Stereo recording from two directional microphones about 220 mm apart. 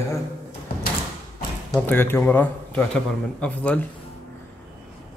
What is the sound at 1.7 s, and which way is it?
Speech, 10° left (ahead or behind).